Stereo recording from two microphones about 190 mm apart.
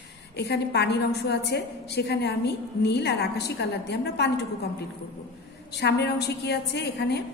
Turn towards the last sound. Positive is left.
turn(degrees=60)  # may be behind; listen again after turning